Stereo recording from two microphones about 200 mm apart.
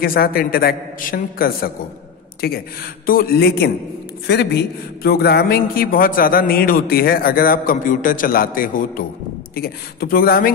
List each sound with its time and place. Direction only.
0.0 s a man's voice: 45° left (ahead or behind)